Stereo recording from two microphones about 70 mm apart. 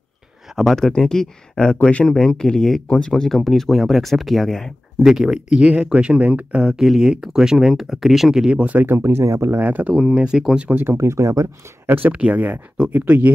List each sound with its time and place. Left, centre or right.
0.6 s speech: centre
5.0 s speech: centre
6.7 s speech: centre
8.8 s speech: right
9.6 s speech: right
9.9 s speech: centre
10.7 s speech: right
11.8 s speech: right